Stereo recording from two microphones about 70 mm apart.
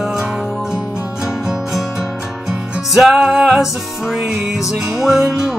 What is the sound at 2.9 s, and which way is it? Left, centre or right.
Music, centre.